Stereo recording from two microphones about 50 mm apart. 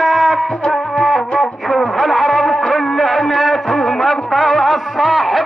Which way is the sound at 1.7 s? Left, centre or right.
Centre.